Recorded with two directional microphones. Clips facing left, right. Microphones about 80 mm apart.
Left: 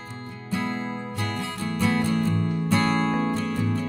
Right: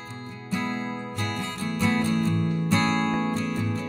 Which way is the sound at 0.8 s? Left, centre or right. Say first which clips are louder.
Left 1 dB; centre.